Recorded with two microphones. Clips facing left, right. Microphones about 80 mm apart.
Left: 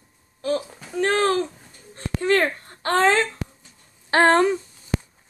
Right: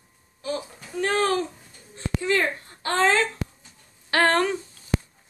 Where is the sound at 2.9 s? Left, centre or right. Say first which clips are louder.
Left 3 dB; left.